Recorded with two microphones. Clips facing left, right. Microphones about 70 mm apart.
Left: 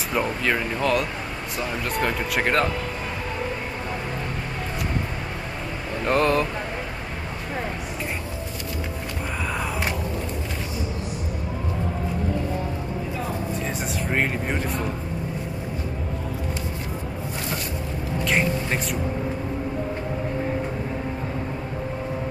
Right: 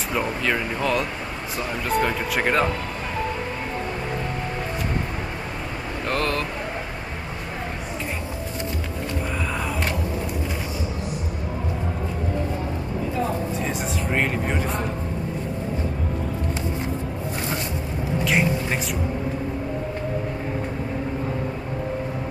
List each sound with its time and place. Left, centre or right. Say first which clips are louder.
0.1 s speech: even; centre
6.0 s speech: left 5 dB; centre
13.7 s vehicle: right 1 dB; centre
18.2 s music: right 1 dB; centre